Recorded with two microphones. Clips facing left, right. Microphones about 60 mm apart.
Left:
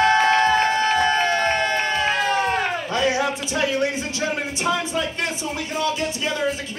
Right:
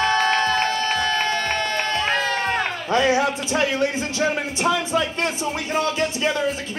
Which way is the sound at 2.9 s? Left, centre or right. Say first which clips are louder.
Right 6 dB; right.